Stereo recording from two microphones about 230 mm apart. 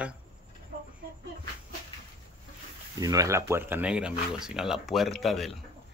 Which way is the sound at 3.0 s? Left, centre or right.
Centre.